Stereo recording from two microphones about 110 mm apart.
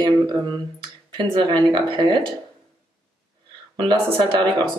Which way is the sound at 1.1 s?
45° right (ahead or behind).